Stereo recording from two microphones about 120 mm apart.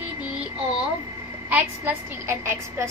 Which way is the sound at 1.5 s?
15° right (ahead or behind).